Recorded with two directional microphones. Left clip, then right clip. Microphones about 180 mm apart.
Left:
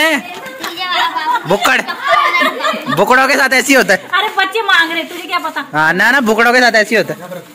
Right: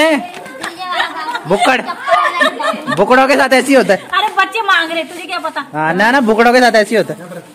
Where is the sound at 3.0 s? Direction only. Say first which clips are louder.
Even; 10° left (ahead or behind).